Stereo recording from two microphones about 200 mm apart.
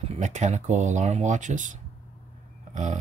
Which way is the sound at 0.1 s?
35° right (ahead or behind).